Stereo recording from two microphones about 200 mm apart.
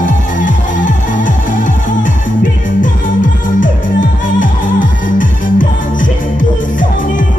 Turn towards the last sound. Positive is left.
turn(degrees=40)  # may be behind; listen again after turning